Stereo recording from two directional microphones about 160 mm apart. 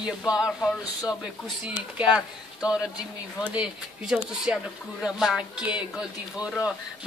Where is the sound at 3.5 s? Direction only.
5° right (ahead or behind).